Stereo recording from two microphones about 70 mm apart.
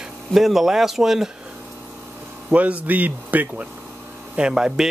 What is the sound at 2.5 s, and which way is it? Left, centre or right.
Speech, right.